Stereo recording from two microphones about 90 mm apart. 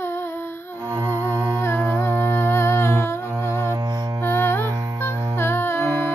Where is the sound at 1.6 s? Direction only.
25° left (ahead or behind).